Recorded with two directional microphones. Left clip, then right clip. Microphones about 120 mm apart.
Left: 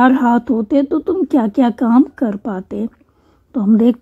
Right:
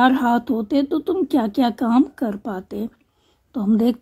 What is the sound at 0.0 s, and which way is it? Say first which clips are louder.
Speech: left 4 dB; 20° left (ahead or behind).